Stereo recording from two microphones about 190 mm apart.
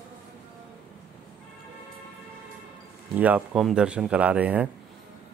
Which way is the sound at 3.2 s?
10° right (ahead or behind).